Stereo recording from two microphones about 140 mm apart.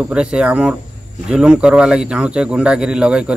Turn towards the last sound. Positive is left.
turn(degrees=-5)  # may be behind; listen again after turning